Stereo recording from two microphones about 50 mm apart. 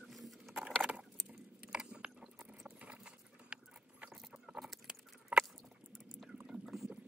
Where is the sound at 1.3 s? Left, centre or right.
Centre.